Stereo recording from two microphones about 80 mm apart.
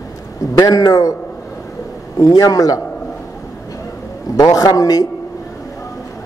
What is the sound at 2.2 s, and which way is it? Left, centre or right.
Speech, left.